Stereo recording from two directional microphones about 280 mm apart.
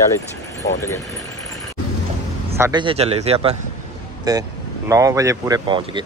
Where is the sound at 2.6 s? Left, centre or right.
Centre.